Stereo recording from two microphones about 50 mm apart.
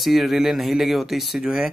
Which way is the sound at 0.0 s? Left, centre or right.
Centre.